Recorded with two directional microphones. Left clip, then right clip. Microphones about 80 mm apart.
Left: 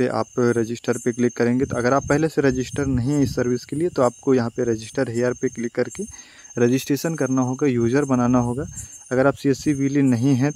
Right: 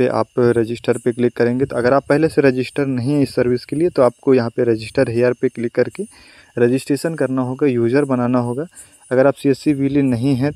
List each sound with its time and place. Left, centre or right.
0.0 s speech: right
6.5 s speech: centre